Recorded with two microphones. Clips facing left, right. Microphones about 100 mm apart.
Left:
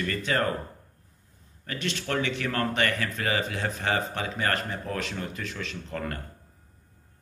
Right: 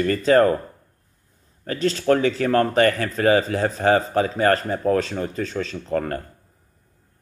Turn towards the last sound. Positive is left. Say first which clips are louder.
# right 9 dB
turn(degrees=-40)  # may be behind; listen again after turning